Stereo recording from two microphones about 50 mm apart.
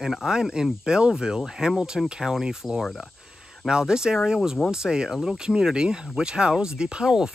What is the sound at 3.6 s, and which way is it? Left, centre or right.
Speech, centre.